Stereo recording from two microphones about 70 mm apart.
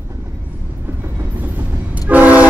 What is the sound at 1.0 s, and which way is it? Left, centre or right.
Vehicle, right.